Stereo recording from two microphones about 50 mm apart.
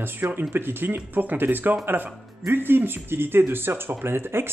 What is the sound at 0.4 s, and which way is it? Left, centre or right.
Speech, right.